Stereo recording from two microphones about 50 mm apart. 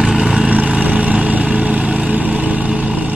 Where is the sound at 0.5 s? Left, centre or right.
Right.